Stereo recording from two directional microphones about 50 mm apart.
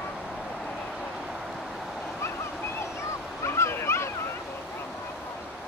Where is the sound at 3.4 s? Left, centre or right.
Left.